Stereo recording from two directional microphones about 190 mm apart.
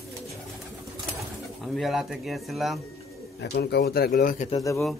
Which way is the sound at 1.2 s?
Centre (ahead or behind).